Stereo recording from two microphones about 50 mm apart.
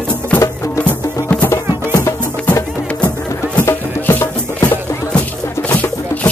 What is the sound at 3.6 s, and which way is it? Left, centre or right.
Music, left.